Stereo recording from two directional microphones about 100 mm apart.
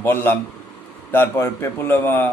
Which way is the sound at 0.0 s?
20° left (ahead or behind).